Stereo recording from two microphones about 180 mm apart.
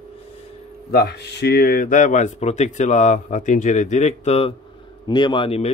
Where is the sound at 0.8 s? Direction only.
60° left (ahead or behind); by 5.7 s 30° left (ahead or behind).